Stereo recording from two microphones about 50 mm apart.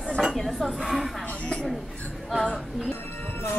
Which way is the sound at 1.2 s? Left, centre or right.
Left.